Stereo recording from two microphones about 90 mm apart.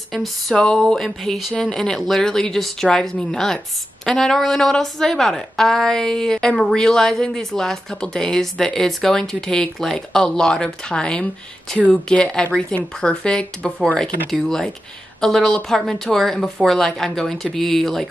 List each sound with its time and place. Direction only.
0.1 s speech: 5° left (ahead or behind)